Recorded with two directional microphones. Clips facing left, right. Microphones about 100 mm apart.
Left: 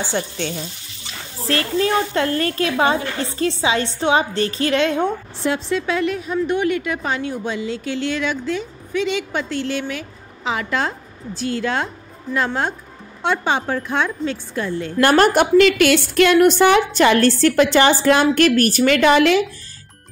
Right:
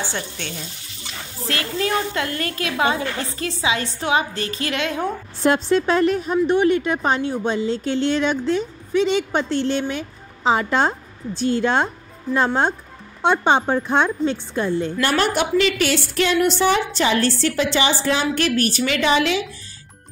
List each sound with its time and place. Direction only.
0.1 s a woman's voice: 40° left (ahead or behind)
5.4 s speech: 40° right (ahead or behind)
6.3 s a woman's voice: 25° right (ahead or behind)
13.2 s a woman's voice: 20° right (ahead or behind)
15.0 s a woman's voice: 50° left (ahead or behind)